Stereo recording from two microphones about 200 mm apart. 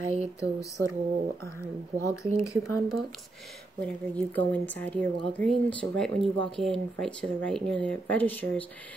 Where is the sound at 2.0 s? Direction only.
15° left (ahead or behind).